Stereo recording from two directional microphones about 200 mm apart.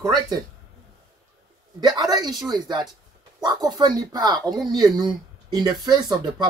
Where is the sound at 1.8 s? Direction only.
20° right (ahead or behind).